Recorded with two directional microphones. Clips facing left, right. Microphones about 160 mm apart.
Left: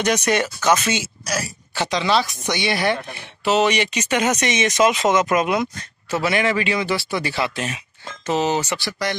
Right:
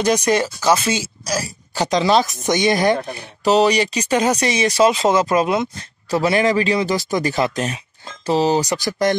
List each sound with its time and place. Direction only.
0.4 s speech: 10° right (ahead or behind)
0.7 s speech: 30° right (ahead or behind)
1.2 s speech: 10° right (ahead or behind)
1.8 s speech: 40° right (ahead or behind)